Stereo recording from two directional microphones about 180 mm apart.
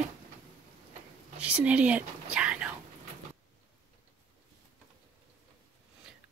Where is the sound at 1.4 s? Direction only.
5° right (ahead or behind).